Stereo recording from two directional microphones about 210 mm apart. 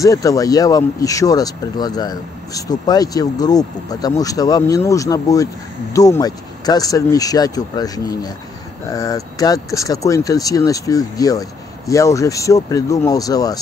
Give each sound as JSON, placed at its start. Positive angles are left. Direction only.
{"t": 0.0, "sound": "speech", "side_deg": 15}